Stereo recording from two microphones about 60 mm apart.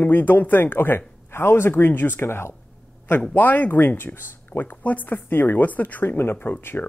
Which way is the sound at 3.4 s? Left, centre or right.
Left.